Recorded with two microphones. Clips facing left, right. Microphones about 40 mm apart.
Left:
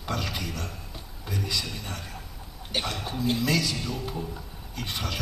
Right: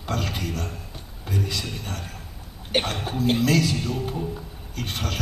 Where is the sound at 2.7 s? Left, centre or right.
Right.